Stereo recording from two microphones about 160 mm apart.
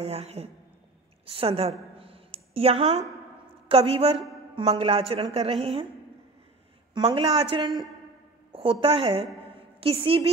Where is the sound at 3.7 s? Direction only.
35° right (ahead or behind).